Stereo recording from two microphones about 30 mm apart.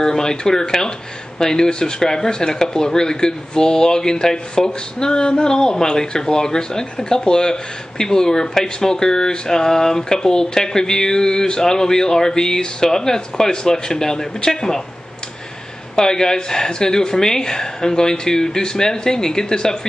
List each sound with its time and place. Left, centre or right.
0.0 s speech: left
16.0 s speech: left